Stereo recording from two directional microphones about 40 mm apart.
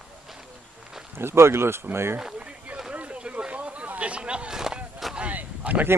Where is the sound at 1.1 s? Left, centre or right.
Right.